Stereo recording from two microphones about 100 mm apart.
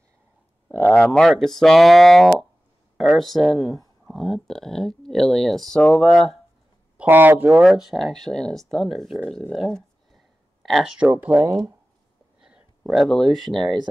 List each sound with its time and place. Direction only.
0.7 s speech: 15° left (ahead or behind)
7.0 s speech: 20° right (ahead or behind)
7.6 s speech: 5° right (ahead or behind)
9.5 s a sound: 5° left (ahead or behind)
10.7 s speech: 5° right (ahead or behind)
11.1 s speech: 15° right (ahead or behind)
12.4 s speech: 5° right (ahead or behind)